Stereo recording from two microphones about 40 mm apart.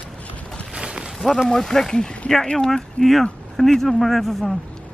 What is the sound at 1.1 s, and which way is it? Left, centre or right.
Speech, centre.